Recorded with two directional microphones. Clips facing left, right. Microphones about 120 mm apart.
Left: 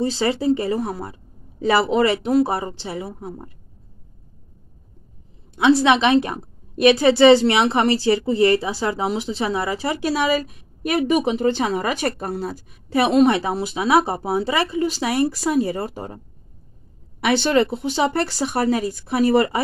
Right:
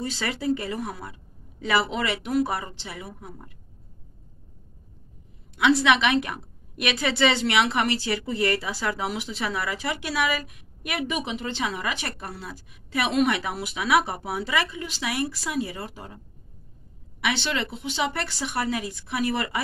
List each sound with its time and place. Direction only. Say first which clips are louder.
0.0 s a woman's voice: left 8 dB; 30° left (ahead or behind)
5.6 s a woman's voice: left 5 dB; 30° left (ahead or behind)
17.2 s a woman's voice: left 10 dB; 45° left (ahead or behind)